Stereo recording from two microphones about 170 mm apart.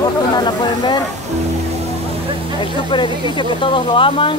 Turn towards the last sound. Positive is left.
turn(degrees=30)  # may be behind; listen again after turning